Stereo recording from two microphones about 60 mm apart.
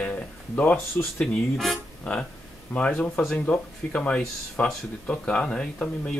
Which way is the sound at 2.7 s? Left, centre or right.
Left.